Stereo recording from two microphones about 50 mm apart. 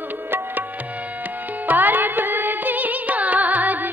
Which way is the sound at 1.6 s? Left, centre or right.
Right.